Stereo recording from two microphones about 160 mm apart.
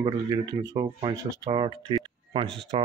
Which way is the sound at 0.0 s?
25° right (ahead or behind).